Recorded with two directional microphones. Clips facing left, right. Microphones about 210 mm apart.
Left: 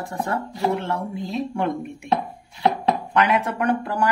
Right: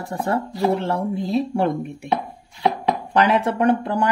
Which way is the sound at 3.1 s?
35° right (ahead or behind).